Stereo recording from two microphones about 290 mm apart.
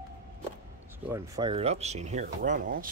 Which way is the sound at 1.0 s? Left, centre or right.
Centre.